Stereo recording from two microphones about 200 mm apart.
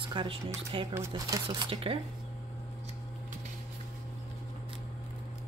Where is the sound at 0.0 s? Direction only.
25° right (ahead or behind).